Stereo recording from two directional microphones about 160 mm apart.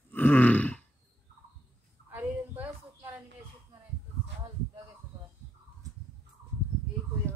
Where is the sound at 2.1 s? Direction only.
10° right (ahead or behind).